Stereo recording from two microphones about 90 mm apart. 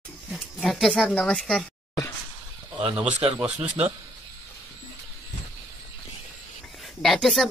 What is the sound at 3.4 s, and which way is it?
Speech, 15° right (ahead or behind).